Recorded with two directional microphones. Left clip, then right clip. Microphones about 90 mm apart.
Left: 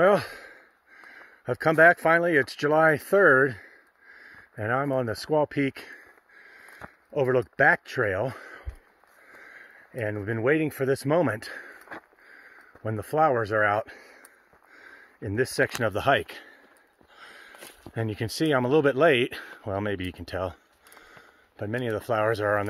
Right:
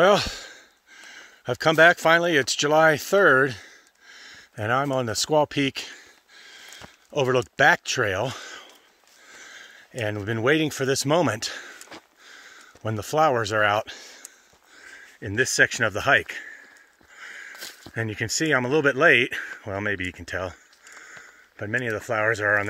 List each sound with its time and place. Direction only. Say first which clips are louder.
0.0 s speech: right 3 dB; 40° right (ahead or behind)
1.0 s a sound: right 2 dB; 35° right (ahead or behind)
1.7 s speech: right 2 dB; 40° right (ahead or behind)
5.3 s speech: right 3 dB; 50° right (ahead or behind)
7.2 s speech: right 2 dB; 55° right (ahead or behind); by 8.6 s 40° right (ahead or behind)
9.3 s a sound: right 4 dB; 35° right (ahead or behind)
9.9 s speech: right 2 dB; 55° right (ahead or behind)
12.3 s speech: right 4 dB; 55° right (ahead or behind); by 14.2 s 30° right (ahead or behind)
14.8 s speech: right 2 dB; 5° right (ahead or behind); by 16.3 s 15° left (ahead or behind)
17.5 s a sound: right 7 dB; 15° left (ahead or behind)
18.1 s speech: right 2 dB; 25° left (ahead or behind)
18.6 s speech: even; 10° left (ahead or behind)
20.3 s a sound: left 2 dB; 5° left (ahead or behind)
21.9 s speech: even; 15° left (ahead or behind)